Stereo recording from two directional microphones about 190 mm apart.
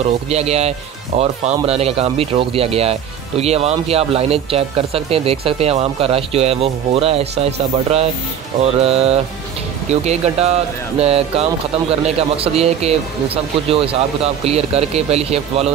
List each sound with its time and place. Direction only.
0.0 s speech: 35° right (ahead or behind)